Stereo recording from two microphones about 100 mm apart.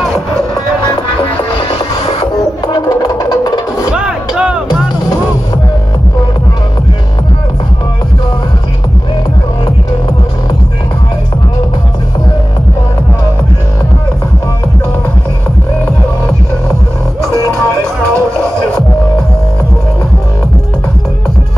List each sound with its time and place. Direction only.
1.6 s music: 60° left (ahead or behind)
2.9 s music: 35° left (ahead or behind)
3.9 s music: 10° right (ahead or behind)
18.1 s music: 5° left (ahead or behind)